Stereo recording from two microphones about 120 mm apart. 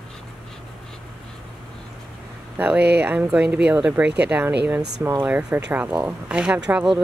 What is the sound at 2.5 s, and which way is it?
Speech, 15° right (ahead or behind).